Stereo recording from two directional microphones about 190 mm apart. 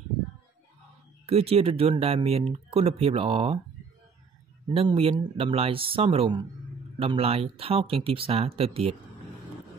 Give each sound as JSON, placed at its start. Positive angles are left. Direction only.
{"t": 1.2, "sound": "speech", "side_deg": -30}
{"t": 4.6, "sound": "speech", "side_deg": -25}